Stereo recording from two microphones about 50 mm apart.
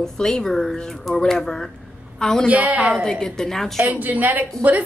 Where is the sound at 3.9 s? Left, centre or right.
Right.